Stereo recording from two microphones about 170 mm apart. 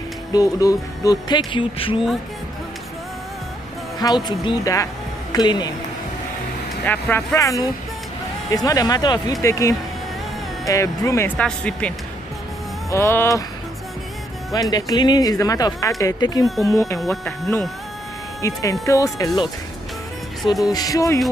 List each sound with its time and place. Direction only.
0.3 s speech: 20° left (ahead or behind)
1.5 s speech: 30° left (ahead or behind)
4.0 s speech: 25° left (ahead or behind)
6.9 s speech: 10° left (ahead or behind)
11.3 s speech: 5° left (ahead or behind)
12.9 s speech: 15° left (ahead or behind)
14.5 s speech: 20° left (ahead or behind)
17.0 s speech: centre (ahead or behind)
18.4 s speech: 20° left (ahead or behind)
20.6 s speech: 20° left (ahead or behind)